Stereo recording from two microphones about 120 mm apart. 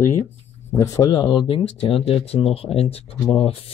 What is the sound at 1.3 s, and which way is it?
Speech, 45° left (ahead or behind).